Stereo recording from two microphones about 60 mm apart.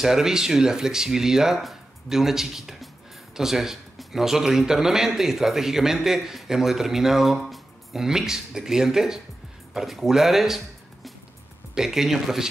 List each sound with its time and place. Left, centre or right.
0.0 s a man's voice: centre
11.7 s a man's voice: centre